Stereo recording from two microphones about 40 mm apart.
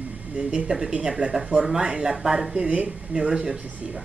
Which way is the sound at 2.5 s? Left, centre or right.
Right.